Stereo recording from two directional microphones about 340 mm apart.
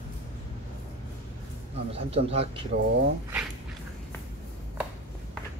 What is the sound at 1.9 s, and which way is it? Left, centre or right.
Speech, centre.